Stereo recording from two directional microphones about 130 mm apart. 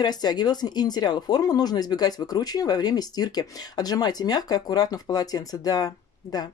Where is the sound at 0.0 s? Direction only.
30° left (ahead or behind).